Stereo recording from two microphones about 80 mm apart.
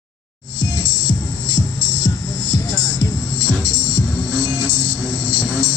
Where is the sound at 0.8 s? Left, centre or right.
Left.